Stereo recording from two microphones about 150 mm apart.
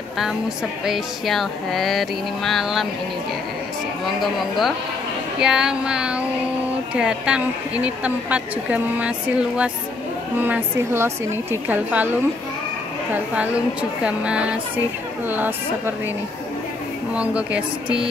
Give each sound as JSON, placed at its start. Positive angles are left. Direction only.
{"t": 0.8, "sound": "speech", "side_deg": 0}
{"t": 4.2, "sound": "a woman's voice", "side_deg": 0}
{"t": 10.4, "sound": "a woman's voice", "side_deg": -15}
{"t": 13.1, "sound": "a woman's voice", "side_deg": -10}
{"t": 17.1, "sound": "a woman's voice", "side_deg": -10}